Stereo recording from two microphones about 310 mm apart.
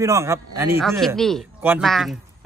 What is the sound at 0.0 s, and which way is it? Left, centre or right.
A man's voice, centre.